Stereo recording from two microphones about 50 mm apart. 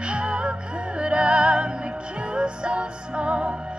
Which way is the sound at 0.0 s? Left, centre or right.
Right.